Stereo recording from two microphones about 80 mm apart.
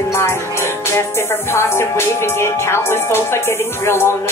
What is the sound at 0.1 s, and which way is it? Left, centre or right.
Music, left.